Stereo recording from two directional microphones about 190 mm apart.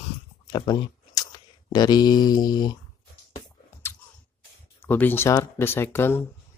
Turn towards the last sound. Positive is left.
turn(degrees=10)  # may be behind; listen again after turning